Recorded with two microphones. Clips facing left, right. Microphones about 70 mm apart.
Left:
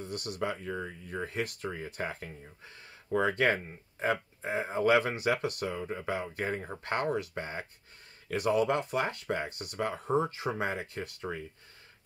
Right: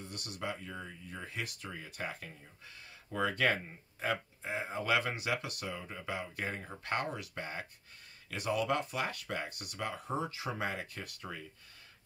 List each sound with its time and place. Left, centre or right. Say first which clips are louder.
0.0 s speech: left 7 dB; left